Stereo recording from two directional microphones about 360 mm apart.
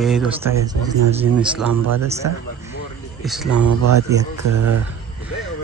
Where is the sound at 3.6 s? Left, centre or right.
Right.